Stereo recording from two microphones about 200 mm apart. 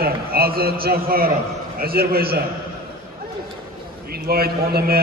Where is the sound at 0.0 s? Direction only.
50° right (ahead or behind).